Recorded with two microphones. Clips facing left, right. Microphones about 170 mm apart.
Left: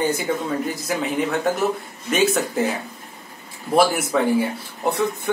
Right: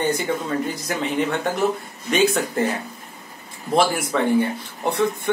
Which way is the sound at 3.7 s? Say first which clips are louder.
Left 2 dB; 5° left (ahead or behind).